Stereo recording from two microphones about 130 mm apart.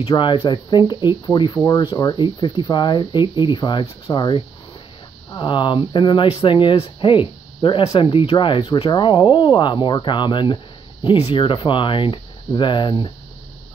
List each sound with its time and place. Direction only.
0.2 s speech: 40° left (ahead or behind)